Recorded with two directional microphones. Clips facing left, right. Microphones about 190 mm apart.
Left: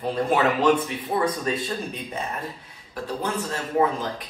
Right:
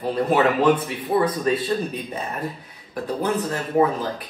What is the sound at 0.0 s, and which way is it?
Speech, 5° right (ahead or behind).